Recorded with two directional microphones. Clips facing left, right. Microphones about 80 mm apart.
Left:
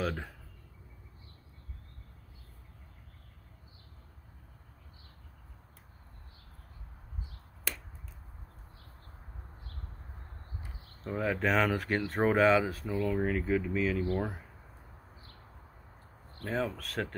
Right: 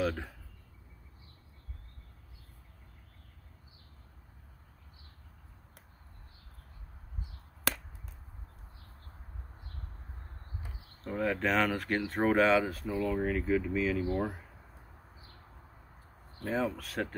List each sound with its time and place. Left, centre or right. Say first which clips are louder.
0.0 s speech: right 2 dB; centre
7.7 s a sound: right 6 dB; right
10.8 s speech: right 1 dB; centre
16.3 s speech: right 1 dB; centre